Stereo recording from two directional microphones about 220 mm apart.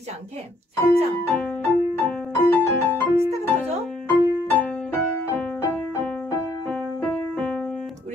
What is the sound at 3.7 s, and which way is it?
Music, 30° right (ahead or behind).